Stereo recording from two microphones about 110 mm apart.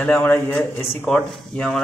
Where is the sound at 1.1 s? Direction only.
5° left (ahead or behind).